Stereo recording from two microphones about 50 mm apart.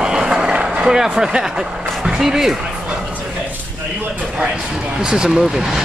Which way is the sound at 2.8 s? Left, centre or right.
Right.